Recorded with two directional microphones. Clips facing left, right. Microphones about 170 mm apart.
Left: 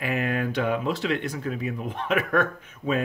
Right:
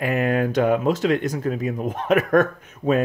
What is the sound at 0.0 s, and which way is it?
Speech, 45° right (ahead or behind).